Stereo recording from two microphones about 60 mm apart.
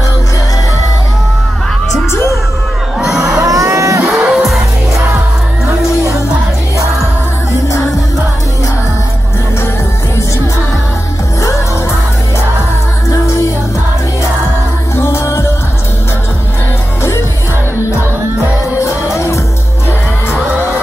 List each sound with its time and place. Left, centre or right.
3.0 s crowd: centre
3.4 s a sound: right
4.1 s music: centre
13.1 s music: left
15.0 s music: left
18.8 s music: left